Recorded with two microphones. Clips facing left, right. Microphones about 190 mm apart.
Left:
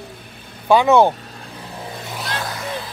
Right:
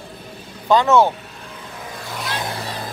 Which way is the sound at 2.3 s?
25° right (ahead or behind).